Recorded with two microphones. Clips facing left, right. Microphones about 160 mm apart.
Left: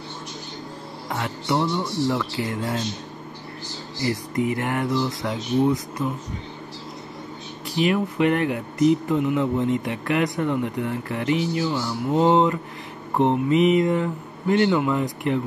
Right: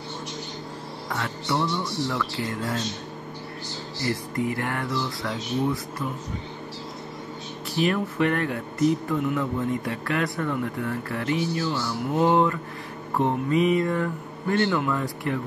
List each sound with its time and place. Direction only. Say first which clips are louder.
1.0 s speech: left 3 dB; 25° left (ahead or behind)
4.0 s speech: left 3 dB; 15° left (ahead or behind)
7.7 s speech: left 3 dB; 15° left (ahead or behind)
13.1 s speech: left 4 dB; 20° left (ahead or behind)